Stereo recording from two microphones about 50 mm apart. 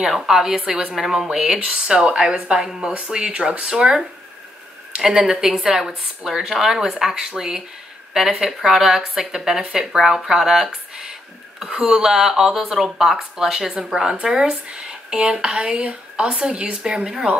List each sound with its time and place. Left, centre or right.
0.0 s speech: centre